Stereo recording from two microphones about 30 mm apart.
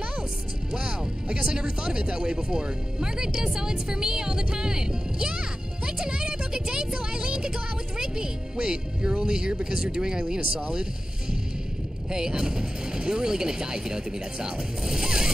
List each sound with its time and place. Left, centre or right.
0.7 s speech: right